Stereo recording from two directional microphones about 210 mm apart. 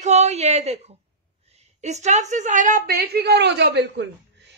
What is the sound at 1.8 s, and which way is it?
A woman's voice, 35° right (ahead or behind).